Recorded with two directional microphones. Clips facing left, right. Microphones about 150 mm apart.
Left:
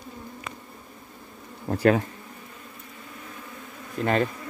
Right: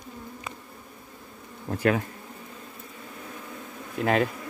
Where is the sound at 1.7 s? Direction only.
35° left (ahead or behind).